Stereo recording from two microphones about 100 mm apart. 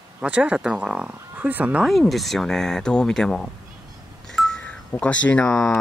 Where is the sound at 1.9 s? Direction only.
Centre (ahead or behind).